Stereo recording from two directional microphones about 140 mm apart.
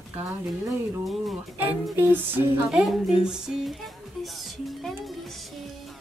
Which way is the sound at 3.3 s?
Centre (ahead or behind).